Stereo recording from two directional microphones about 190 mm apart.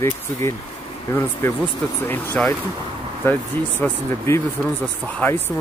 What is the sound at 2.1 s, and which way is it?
Speech, 10° left (ahead or behind).